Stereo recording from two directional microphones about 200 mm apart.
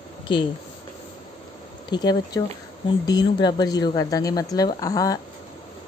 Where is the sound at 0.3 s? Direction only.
25° left (ahead or behind).